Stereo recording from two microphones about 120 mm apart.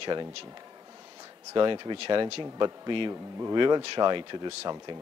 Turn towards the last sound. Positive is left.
turn(degrees=-40)  # may be behind; listen again after turning